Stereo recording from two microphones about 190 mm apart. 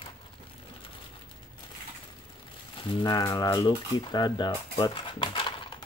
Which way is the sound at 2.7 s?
25° left (ahead or behind).